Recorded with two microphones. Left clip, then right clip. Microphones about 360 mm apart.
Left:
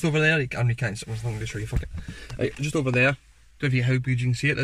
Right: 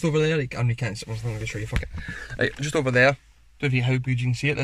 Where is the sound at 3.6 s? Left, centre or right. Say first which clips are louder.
Right 1 dB; centre.